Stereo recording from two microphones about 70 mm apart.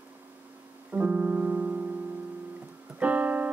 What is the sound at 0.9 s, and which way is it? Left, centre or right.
Music, right.